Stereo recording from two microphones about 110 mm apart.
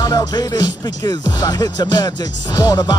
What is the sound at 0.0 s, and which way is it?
Music, 35° left (ahead or behind).